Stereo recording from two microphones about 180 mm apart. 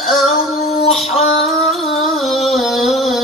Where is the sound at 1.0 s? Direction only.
35° left (ahead or behind).